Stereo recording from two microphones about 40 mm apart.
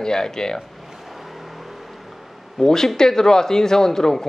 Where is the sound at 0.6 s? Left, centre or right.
Centre.